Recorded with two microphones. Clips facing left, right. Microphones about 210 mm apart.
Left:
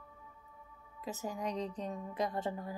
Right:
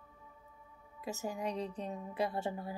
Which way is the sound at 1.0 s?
10° right (ahead or behind).